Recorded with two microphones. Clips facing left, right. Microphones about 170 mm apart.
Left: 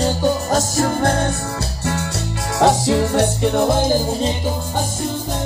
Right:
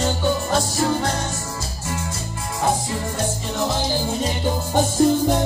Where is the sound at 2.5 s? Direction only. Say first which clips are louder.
Left 8 dB; 80° left; by 4.0 s 50° left (ahead or behind).